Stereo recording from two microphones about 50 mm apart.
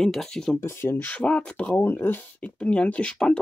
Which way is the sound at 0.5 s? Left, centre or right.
Left.